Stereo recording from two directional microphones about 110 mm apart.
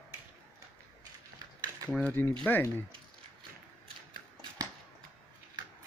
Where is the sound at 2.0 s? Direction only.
15° left (ahead or behind).